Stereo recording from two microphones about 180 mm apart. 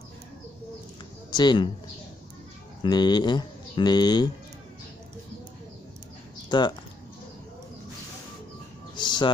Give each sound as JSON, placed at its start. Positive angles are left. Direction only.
{"t": 1.3, "sound": "speech", "side_deg": 25}
{"t": 2.8, "sound": "speech", "side_deg": 25}
{"t": 6.5, "sound": "speech", "side_deg": 25}
{"t": 8.9, "sound": "bird", "side_deg": 25}